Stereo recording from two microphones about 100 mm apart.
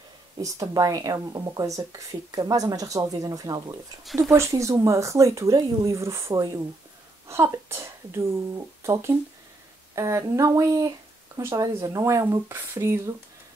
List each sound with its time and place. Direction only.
0.4 s speech: 35° right (ahead or behind)
4.0 s speech: centre (ahead or behind)
4.3 s speech: 30° right (ahead or behind)